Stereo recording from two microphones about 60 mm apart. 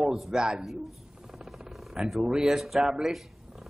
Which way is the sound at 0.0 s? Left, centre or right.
Centre.